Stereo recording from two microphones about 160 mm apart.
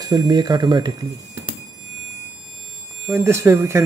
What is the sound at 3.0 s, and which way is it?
Speech, 15° right (ahead or behind).